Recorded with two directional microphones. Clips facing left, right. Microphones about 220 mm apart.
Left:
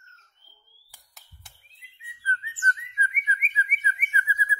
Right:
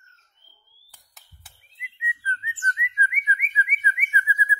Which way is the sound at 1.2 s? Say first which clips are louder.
Even; centre (ahead or behind).